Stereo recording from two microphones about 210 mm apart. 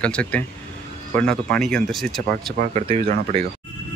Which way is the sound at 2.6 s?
30° right (ahead or behind).